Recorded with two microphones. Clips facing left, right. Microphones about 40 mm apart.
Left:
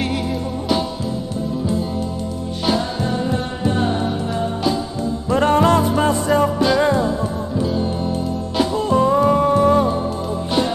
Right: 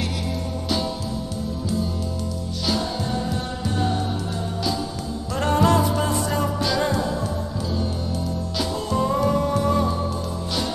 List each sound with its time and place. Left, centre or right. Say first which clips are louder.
2.6 s music: left 5 dB; left
5.3 s music: left 5 dB; left